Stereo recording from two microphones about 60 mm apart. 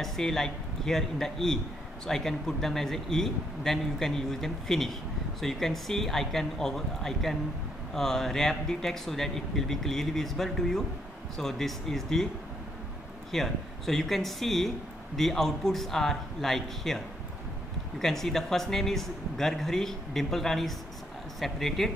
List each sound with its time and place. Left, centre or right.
0.0 s a man's voice: centre
13.3 s a man's voice: centre